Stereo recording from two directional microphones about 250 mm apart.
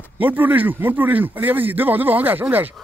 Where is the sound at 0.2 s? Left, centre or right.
Centre.